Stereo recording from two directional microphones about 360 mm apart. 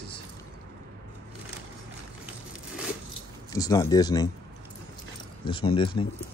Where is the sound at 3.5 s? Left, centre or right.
Centre.